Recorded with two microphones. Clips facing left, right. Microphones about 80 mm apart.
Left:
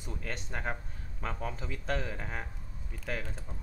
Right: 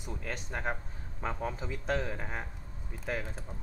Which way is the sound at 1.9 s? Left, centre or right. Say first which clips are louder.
Right 2 dB; centre.